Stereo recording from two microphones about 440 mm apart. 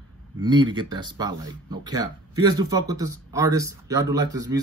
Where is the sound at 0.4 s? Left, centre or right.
Centre.